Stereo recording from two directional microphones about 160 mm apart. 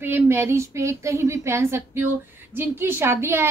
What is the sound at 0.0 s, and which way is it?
A woman's voice, 15° right (ahead or behind).